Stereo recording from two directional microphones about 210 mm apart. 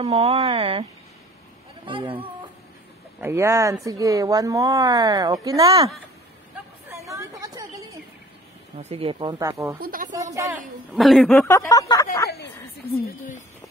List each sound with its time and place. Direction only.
0.0 s speech: 30° right (ahead or behind)
1.9 s speech: 25° right (ahead or behind)
3.2 s a woman's voice: 15° right (ahead or behind)
6.9 s a sound: 15° right (ahead or behind)
8.7 s speech: 25° right (ahead or behind)
9.8 s speech: 40° right (ahead or behind)
10.1 s a woman's voice: 15° right (ahead or behind)
11.0 s speech: centre (ahead or behind)
11.4 s speech: 15° left (ahead or behind)
13.0 s speech: 40° left (ahead or behind)